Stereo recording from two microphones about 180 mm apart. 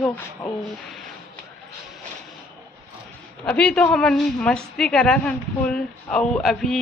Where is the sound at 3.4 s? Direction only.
5° left (ahead or behind).